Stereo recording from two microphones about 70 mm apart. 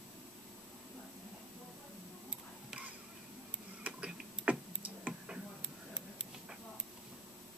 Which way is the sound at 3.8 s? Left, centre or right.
Centre.